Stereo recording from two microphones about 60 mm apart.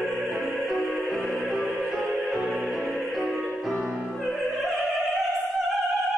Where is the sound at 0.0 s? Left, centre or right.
Centre.